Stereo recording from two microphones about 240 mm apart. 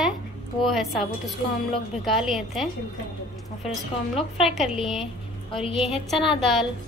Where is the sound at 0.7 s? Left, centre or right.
Centre.